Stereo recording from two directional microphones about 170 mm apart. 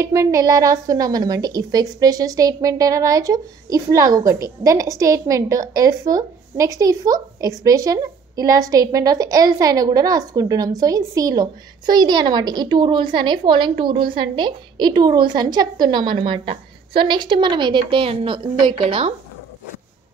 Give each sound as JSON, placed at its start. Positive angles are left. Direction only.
{"t": 0.0, "sound": "a woman's voice", "side_deg": -20}